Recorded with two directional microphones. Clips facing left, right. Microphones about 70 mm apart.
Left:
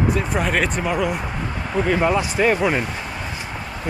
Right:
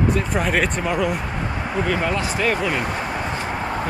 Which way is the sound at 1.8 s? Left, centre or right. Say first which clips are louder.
Left 4 dB; centre.